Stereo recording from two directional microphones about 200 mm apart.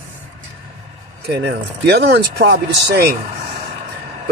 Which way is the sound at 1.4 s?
60° right (ahead or behind).